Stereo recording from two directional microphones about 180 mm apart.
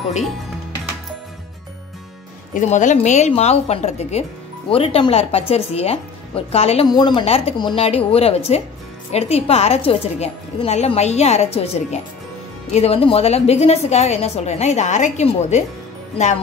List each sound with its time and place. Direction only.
2.5 s a woman's voice: 45° left (ahead or behind)
6.9 s a woman's voice: 25° left (ahead or behind); by 15.6 s 40° left (ahead or behind)